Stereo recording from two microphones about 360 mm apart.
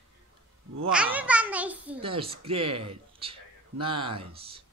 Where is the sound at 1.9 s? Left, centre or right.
Centre.